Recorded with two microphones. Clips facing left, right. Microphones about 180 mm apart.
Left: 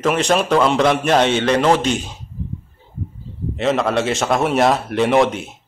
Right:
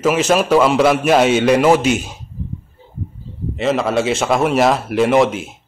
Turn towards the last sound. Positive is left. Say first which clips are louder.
# right 2 dB
turn(degrees=0)  # may be behind; listen again after turning